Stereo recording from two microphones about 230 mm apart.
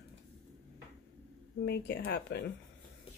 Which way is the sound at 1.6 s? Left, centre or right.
Left.